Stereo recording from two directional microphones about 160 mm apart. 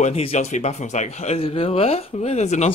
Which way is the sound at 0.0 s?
40° left (ahead or behind).